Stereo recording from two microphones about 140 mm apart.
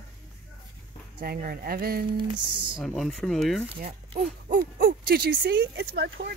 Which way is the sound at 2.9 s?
Centre (ahead or behind).